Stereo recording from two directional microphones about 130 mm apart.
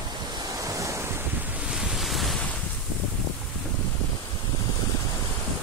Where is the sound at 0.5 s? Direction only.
25° right (ahead or behind).